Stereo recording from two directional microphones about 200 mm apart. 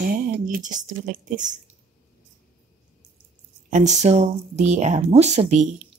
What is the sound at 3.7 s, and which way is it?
Speech, 35° right (ahead or behind).